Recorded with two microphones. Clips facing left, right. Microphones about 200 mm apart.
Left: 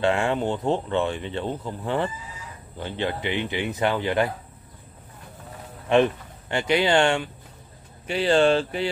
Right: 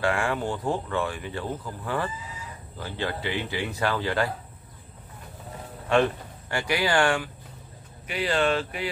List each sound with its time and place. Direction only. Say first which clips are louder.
0.0 s speech: left 4 dB; 25° left (ahead or behind)
5.9 s speech: left 3 dB; 20° left (ahead or behind)